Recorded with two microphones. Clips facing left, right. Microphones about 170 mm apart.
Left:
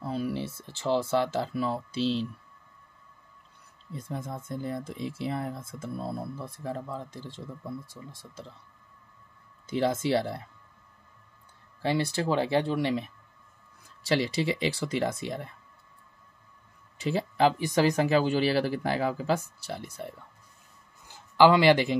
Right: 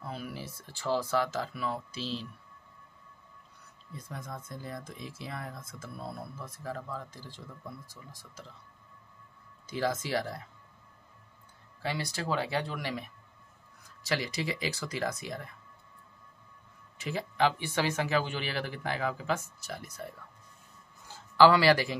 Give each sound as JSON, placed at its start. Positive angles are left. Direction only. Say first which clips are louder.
{"t": 0.0, "sound": "speech", "louder": "left 9 dB", "side_deg": 35}
{"t": 3.9, "sound": "speech", "louder": "left 6 dB", "side_deg": 25}
{"t": 9.7, "sound": "speech", "louder": "left 6 dB", "side_deg": 25}
{"t": 11.8, "sound": "speech", "louder": "left 7 dB", "side_deg": 30}
{"t": 17.0, "sound": "speech", "louder": "left 5 dB", "side_deg": 35}
{"t": 21.1, "sound": "a sound", "louder": "left 2 dB", "side_deg": 20}